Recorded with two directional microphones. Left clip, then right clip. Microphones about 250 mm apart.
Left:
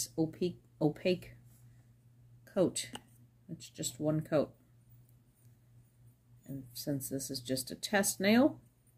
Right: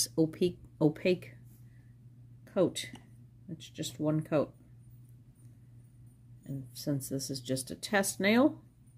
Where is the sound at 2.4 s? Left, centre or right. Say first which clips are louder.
Right 2 dB; centre.